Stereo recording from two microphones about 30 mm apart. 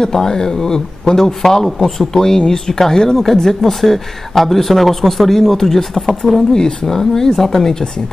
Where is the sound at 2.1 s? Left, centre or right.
Left.